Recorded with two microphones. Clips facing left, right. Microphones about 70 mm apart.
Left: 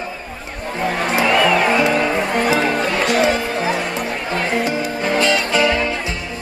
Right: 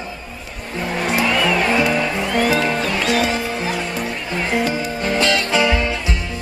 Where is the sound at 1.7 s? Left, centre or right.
Left.